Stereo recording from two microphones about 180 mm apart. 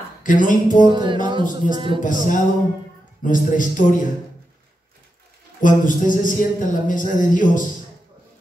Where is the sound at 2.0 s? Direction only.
45° left (ahead or behind).